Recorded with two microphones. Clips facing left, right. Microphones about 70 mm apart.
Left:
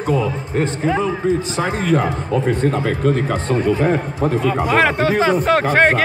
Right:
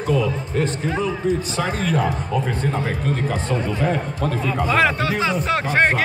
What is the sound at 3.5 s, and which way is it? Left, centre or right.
A man's voice, left.